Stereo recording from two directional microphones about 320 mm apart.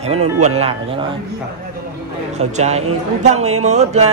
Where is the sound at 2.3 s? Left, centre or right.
Right.